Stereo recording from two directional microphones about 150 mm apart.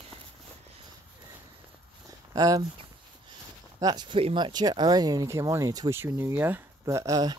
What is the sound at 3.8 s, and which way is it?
Speech, 30° right (ahead or behind).